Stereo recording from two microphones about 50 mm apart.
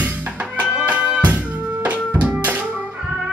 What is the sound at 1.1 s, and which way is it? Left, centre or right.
Music, right.